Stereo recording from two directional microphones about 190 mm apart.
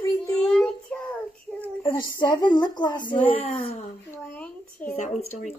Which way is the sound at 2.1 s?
20° left (ahead or behind).